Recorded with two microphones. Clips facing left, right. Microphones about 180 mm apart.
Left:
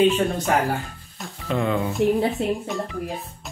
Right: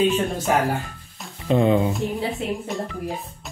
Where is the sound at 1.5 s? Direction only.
20° right (ahead or behind).